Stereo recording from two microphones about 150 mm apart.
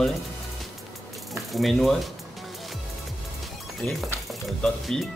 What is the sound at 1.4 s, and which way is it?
Speech, centre (ahead or behind).